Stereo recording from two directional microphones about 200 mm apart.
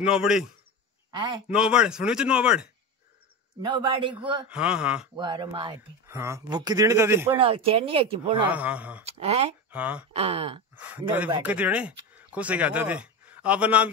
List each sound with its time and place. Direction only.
0.0 s speech: 5° right (ahead or behind)
1.1 s a man's voice: 25° right (ahead or behind)
1.5 s speech: 5° right (ahead or behind)
3.6 s speech: 25° right (ahead or behind)
4.5 s speech: 5° right (ahead or behind)
5.1 s speech: 20° right (ahead or behind)
7.3 s speech: 25° right (ahead or behind)
8.5 s speech: 10° right (ahead or behind)
9.0 s speech: 30° right (ahead or behind)
9.7 s speech: 5° right (ahead or behind)
10.1 s speech: 30° right (ahead or behind)
10.8 s speech: 10° right (ahead or behind)